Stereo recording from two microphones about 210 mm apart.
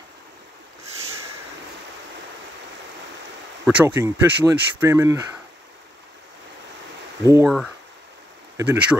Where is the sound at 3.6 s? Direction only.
10° right (ahead or behind).